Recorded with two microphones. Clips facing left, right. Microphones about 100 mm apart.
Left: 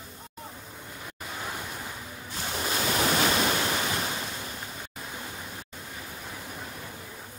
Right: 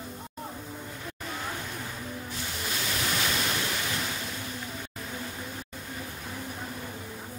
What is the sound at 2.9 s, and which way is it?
Ocean, 50° left (ahead or behind).